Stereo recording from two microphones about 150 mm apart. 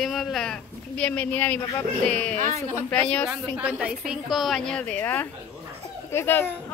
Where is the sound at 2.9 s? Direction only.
10° left (ahead or behind).